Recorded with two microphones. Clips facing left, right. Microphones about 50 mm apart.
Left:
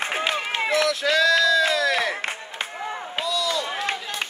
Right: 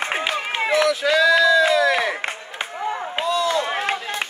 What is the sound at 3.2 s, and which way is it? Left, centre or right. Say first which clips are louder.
Run: right 5 dB; right.